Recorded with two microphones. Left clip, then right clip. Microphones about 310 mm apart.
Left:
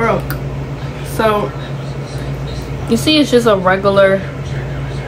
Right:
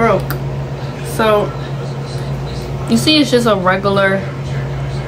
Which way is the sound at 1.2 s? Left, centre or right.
Centre.